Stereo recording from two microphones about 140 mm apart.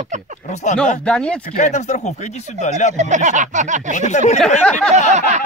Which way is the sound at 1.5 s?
60° left (ahead or behind).